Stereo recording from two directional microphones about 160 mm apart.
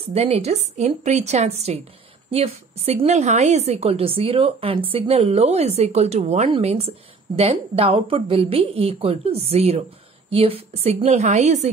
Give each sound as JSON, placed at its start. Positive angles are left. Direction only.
{"t": 0.1, "sound": "a woman's voice", "side_deg": -40}